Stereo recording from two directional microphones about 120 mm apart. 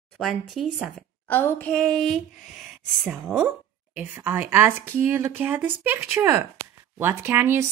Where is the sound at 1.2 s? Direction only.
15° left (ahead or behind).